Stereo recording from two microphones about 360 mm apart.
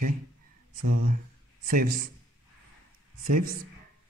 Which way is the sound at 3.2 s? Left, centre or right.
Right.